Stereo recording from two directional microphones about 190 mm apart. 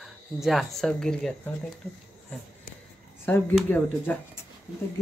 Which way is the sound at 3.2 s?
5° left (ahead or behind).